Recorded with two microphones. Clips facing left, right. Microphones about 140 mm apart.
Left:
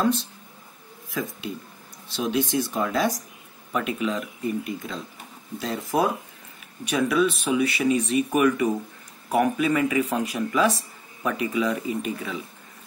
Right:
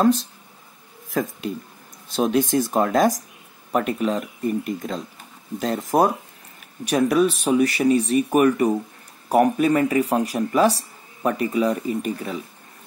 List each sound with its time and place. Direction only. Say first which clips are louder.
0.0 s speech: right 5 dB; 45° right (ahead or behind)